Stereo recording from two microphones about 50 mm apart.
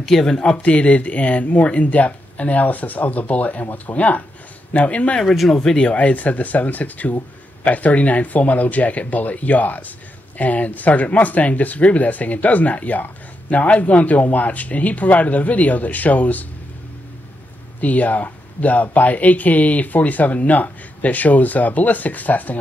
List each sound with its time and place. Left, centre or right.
0.0 s speech: centre
0.6 s speech: left
5.2 s speech: centre
5.5 s speech: centre; by 16.4 s left
17.7 s speech: left